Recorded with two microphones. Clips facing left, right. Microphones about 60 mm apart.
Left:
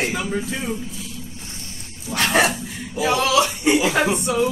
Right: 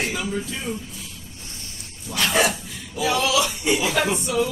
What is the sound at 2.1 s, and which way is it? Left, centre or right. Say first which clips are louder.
Dog: left 2 dB; left.